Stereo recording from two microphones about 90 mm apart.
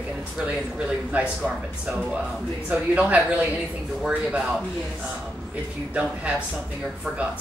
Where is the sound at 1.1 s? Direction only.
15° right (ahead or behind).